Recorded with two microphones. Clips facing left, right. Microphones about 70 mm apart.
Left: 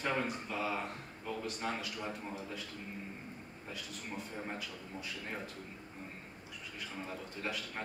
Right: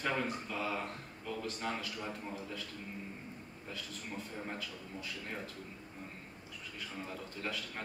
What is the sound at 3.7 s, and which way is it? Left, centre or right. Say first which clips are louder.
Speech: even; centre.